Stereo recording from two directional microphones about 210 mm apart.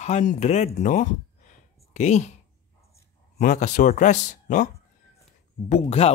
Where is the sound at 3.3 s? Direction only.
35° left (ahead or behind).